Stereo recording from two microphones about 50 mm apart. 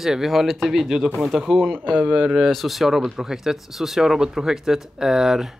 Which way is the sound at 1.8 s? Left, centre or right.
Right.